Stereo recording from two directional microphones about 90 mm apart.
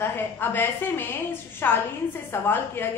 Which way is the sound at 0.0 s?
20° left (ahead or behind).